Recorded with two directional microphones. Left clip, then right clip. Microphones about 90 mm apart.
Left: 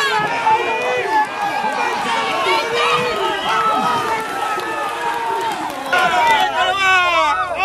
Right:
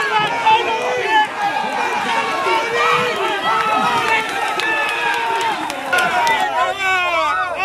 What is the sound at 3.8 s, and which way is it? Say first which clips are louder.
Run: right 1 dB; 20° right (ahead or behind).